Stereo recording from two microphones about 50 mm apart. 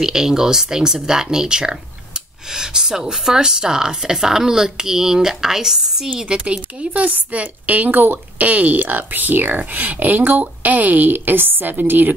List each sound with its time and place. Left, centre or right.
0.0 s speech: centre
6.1 s speech: right